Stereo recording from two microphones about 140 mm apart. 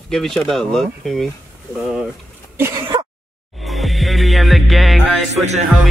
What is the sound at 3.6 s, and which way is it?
Music, centre (ahead or behind).